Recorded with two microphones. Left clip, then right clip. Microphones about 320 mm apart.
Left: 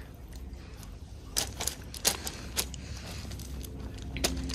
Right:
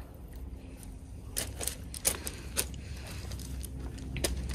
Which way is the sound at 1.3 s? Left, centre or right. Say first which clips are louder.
Left 5 dB; centre.